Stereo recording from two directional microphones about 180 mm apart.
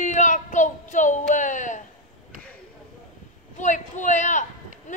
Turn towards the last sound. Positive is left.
turn(degrees=45)  # may be behind; listen again after turning